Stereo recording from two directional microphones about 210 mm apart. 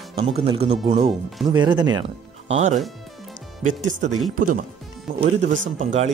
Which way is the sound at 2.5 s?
35° right (ahead or behind).